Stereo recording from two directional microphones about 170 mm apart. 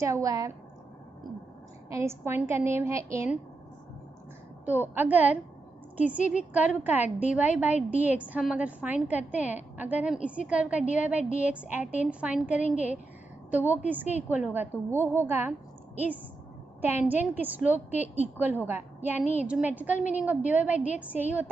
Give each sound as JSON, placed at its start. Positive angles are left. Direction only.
{"t": 0.0, "sound": "a woman's voice", "side_deg": -20}
{"t": 1.9, "sound": "a woman's voice", "side_deg": -15}
{"t": 4.6, "sound": "a woman's voice", "side_deg": -10}
{"t": 16.8, "sound": "a woman's voice", "side_deg": -10}
{"t": 20.0, "sound": "a woman's voice", "side_deg": 50}
{"t": 20.2, "sound": "a woman's voice", "side_deg": -10}